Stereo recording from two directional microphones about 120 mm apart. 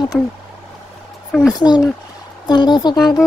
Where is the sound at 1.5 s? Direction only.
35° left (ahead or behind).